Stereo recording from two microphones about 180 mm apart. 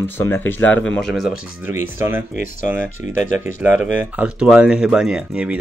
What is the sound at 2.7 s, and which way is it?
Speech, 10° right (ahead or behind).